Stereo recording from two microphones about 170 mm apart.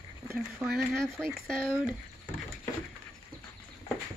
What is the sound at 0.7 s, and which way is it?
Speech, centre (ahead or behind).